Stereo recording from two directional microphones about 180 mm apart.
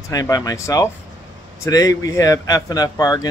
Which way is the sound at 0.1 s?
20° left (ahead or behind).